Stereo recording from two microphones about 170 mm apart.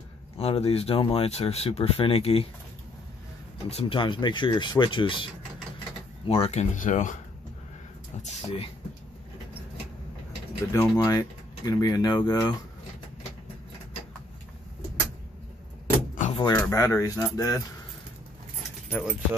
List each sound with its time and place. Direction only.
0.4 s speech: 35° left (ahead or behind)
3.6 s speech: 35° left (ahead or behind); by 7.2 s 50° left (ahead or behind)
8.2 s speech: 40° left (ahead or behind)
10.7 s speech: 20° left (ahead or behind)
16.2 s door: 40° left (ahead or behind)
16.5 s speech: 15° left (ahead or behind)
18.9 s speech: 5° left (ahead or behind)